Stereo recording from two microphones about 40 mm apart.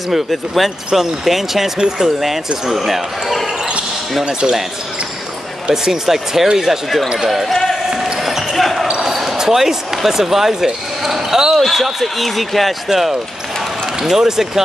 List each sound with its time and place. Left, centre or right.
0.1 s speech: centre
4.2 s speech: centre
5.7 s speech: centre
8.0 s basketball bounce: centre
9.0 s speech: centre
11.6 s speech: centre